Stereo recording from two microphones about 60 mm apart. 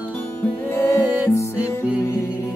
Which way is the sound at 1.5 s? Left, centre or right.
Right.